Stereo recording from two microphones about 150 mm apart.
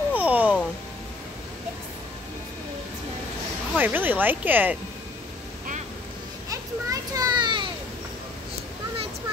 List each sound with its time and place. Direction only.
0.1 s babbling: 10° right (ahead or behind)
3.7 s speech: 10° right (ahead or behind)
6.5 s children playing: 25° right (ahead or behind)